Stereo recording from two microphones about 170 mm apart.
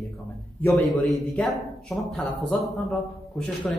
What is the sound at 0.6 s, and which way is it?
A man's voice, 10° left (ahead or behind).